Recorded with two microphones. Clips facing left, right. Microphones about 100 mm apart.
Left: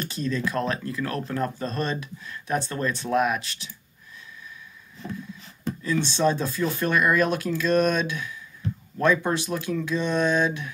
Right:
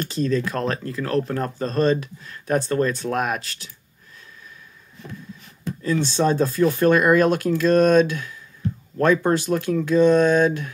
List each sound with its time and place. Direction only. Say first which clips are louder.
0.0 s speech: right 5 dB; 40° right (ahead or behind)
5.8 s speech: right 4 dB; 45° right (ahead or behind)